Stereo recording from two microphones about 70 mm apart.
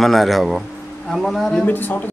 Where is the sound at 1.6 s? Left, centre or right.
Left.